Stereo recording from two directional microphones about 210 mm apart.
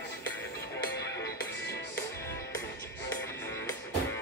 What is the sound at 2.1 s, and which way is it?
Music, 15° left (ahead or behind).